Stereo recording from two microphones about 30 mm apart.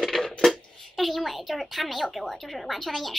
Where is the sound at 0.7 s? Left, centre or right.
Centre.